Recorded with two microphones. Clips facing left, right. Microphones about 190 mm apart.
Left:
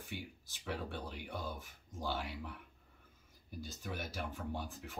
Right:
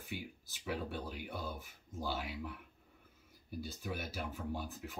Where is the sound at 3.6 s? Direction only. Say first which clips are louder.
Right 2 dB; 10° right (ahead or behind).